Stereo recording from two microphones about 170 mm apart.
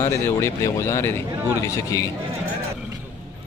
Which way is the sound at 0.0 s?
15° left (ahead or behind).